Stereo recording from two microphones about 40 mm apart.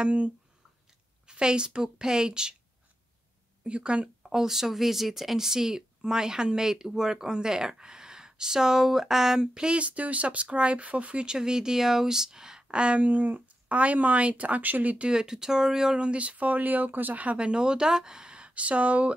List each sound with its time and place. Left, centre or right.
0.0 s speech: right
1.2 s a woman's voice: right
3.6 s a woman's voice: right
4.2 s speech: centre
9.5 s speech: right
11.2 s speech: centre; by 15.0 s right
15.0 s speech: centre
16.0 s speech: right
17.2 s a woman's voice: right